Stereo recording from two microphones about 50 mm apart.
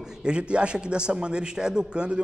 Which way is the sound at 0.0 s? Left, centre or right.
Centre.